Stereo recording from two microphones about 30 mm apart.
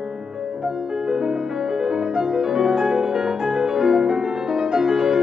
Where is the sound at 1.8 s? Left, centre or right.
Centre.